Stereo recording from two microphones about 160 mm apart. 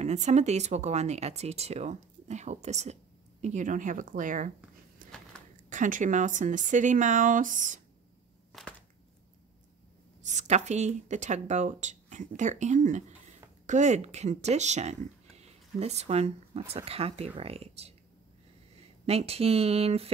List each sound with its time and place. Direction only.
0.0 s speech: 45° right (ahead or behind)
5.7 s speech: 55° right (ahead or behind)
10.2 s speech: 45° right (ahead or behind)
19.0 s speech: 40° right (ahead or behind)